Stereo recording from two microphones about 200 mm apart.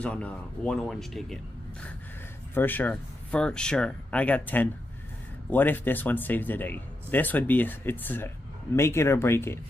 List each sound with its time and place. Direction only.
0.0 s speech: 5° left (ahead or behind)